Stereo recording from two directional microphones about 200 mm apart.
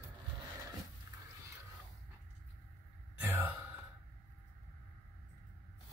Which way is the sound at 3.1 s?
10° right (ahead or behind).